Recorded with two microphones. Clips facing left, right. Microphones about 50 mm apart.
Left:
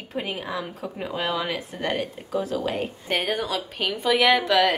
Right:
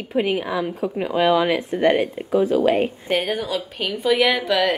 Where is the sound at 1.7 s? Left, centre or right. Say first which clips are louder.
Right 11 dB; right.